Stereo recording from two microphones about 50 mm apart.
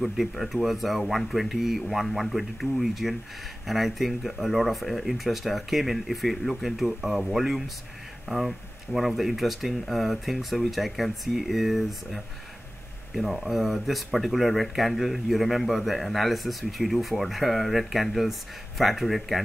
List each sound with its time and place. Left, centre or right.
0.0 s speech: centre